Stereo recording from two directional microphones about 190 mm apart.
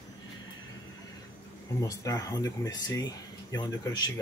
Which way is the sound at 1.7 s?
15° left (ahead or behind).